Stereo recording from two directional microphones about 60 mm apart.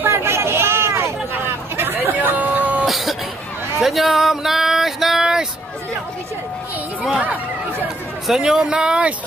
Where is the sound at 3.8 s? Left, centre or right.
Centre.